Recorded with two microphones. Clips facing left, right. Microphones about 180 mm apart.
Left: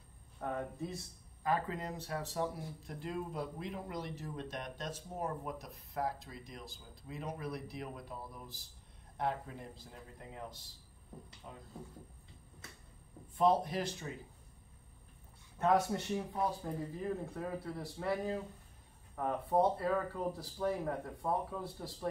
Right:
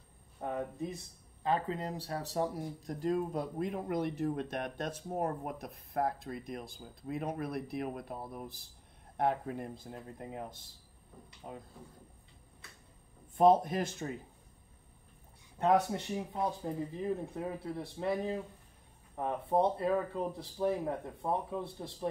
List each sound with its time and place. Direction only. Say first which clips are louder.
0.4 s speech: right 2 dB; 15° right (ahead or behind); by 10.6 s 50° right (ahead or behind)
11.4 s speech: right 7 dB; 40° right (ahead or behind)
13.7 s speech: right 3 dB; 45° right (ahead or behind)
15.6 s speech: right 2 dB; 20° right (ahead or behind)